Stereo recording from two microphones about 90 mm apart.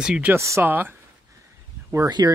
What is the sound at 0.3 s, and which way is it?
Speech, 30° right (ahead or behind).